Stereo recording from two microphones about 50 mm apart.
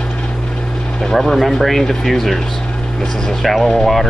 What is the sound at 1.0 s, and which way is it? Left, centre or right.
Speech, centre.